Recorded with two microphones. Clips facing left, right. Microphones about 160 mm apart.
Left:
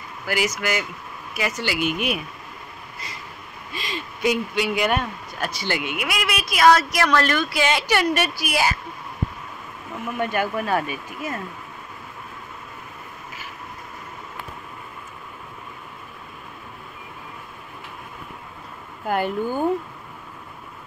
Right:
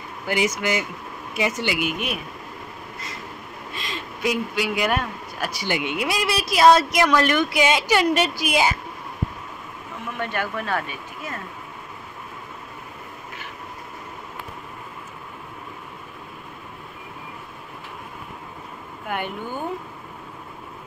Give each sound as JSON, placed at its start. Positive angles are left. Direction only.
{"t": 0.3, "sound": "speech", "side_deg": -20}
{"t": 1.9, "sound": "speech", "side_deg": 0}
{"t": 3.7, "sound": "speech", "side_deg": 0}
{"t": 5.6, "sound": "a woman's voice", "side_deg": -20}
{"t": 10.1, "sound": "speech", "side_deg": 10}
{"t": 19.0, "sound": "speech", "side_deg": 35}